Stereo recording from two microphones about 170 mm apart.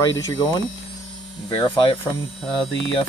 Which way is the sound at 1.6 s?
25° left (ahead or behind).